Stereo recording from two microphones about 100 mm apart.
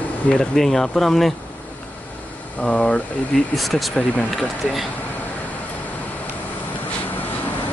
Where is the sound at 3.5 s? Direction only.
Centre (ahead or behind).